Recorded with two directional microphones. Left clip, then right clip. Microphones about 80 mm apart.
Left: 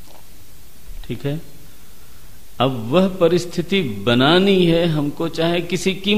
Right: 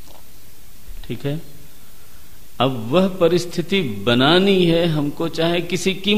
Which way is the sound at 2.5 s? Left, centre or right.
Centre.